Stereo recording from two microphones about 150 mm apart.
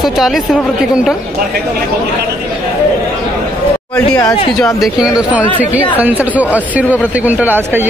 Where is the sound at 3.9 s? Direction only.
20° left (ahead or behind).